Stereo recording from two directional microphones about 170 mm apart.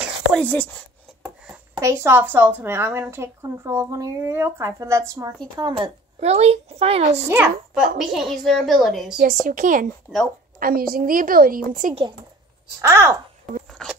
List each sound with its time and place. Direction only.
0.0 s whispering: 5° left (ahead or behind)
1.2 s a sound: 5° right (ahead or behind)
1.8 s a woman's voice: 15° right (ahead or behind)
6.1 s a child's voice: 40° right (ahead or behind)
7.2 s a woman's voice: 10° right (ahead or behind)
9.2 s a woman's voice: 50° right (ahead or behind)
10.1 s a child's voice: centre (ahead or behind)
10.6 s a woman's voice: 60° right (ahead or behind)
12.8 s a woman's voice: 15° right (ahead or behind)
13.7 s a sound: centre (ahead or behind)